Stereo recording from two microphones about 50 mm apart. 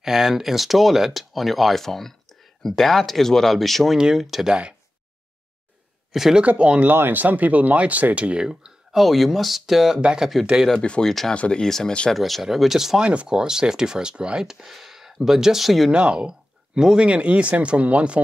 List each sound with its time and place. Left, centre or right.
0.0 s speech: centre
4.0 s speech: centre
4.5 s speech: centre
6.4 s speech: right
6.9 s speech: right; by 8.7 s centre
8.9 s speech: centre
10.8 s speech: left
11.1 s speech: centre
11.3 s speech: left
11.6 s speech: centre
13.0 s speech: right
14.4 s speech: centre
15.9 s speech: right